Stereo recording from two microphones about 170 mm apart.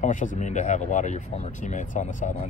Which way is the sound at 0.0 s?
50° left (ahead or behind).